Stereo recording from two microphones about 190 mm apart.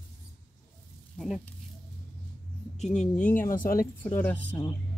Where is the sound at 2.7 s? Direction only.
35° left (ahead or behind).